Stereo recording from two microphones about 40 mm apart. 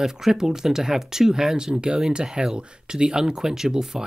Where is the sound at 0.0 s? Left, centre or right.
Centre.